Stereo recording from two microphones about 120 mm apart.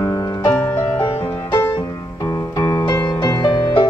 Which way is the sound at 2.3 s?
30° left (ahead or behind).